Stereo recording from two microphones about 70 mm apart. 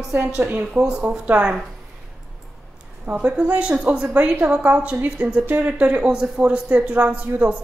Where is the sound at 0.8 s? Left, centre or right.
Centre.